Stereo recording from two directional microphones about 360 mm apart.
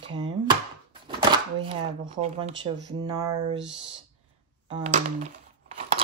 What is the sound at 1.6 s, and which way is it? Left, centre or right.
Speech, centre.